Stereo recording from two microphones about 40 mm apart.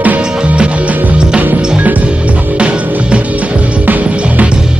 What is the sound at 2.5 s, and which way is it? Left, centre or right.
Music, right.